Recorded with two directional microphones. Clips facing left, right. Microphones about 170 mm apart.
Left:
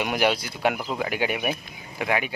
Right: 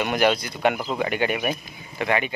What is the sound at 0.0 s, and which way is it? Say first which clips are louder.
Speech: right 2 dB; 10° left (ahead or behind).